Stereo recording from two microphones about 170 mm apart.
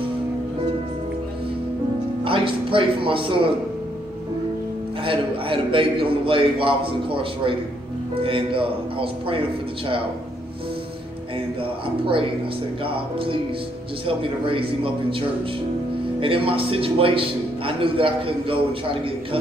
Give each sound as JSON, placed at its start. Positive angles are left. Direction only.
{"t": 2.2, "sound": "speech", "side_deg": -30}
{"t": 5.0, "sound": "speech", "side_deg": -30}
{"t": 12.8, "sound": "speech", "side_deg": -30}